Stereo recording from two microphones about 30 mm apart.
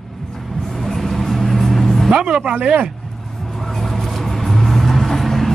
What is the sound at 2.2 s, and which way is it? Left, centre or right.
Speech, right.